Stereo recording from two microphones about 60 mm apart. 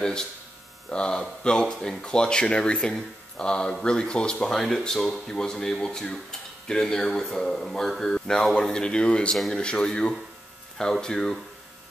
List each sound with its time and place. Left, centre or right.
0.0 s speech: centre